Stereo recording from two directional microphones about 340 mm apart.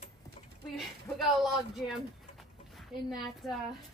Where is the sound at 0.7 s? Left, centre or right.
Centre.